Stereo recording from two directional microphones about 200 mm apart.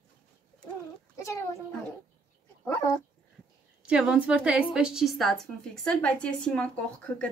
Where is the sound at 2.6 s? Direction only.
20° left (ahead or behind).